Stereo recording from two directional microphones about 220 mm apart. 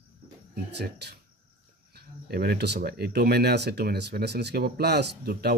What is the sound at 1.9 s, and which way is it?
Speech, 45° right (ahead or behind).